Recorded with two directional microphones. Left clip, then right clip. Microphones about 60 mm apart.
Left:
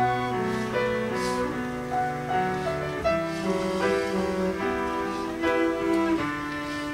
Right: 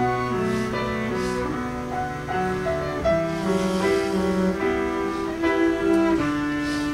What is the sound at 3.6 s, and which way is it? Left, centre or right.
Music, left.